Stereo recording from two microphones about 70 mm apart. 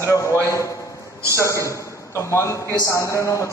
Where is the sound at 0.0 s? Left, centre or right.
Left.